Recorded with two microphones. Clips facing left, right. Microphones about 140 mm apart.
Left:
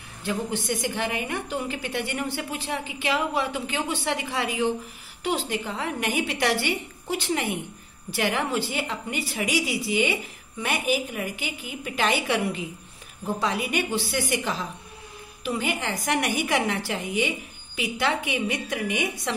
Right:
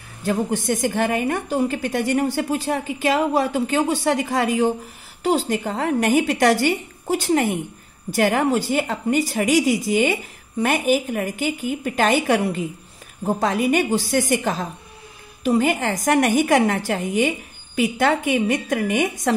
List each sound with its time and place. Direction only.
0.2 s a woman's voice: 45° right (ahead or behind)